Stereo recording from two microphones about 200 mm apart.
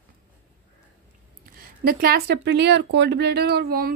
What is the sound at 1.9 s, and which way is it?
A woman's voice, 50° right (ahead or behind).